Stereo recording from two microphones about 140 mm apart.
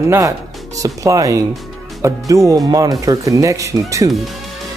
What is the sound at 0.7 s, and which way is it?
Speech, 25° right (ahead or behind).